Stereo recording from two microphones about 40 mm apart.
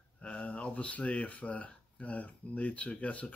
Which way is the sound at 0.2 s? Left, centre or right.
Left.